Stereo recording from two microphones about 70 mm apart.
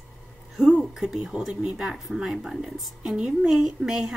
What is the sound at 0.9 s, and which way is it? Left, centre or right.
A woman's voice, centre.